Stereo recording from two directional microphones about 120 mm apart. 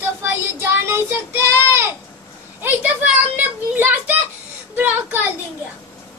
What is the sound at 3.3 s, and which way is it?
Speech, 15° right (ahead or behind).